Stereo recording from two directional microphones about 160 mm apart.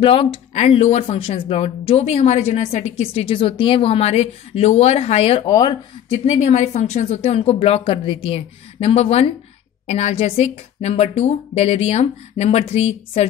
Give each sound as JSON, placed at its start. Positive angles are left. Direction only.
{"t": 0.0, "sound": "speech", "side_deg": 35}
{"t": 5.5, "sound": "speech", "side_deg": 25}
{"t": 6.1, "sound": "speech", "side_deg": 45}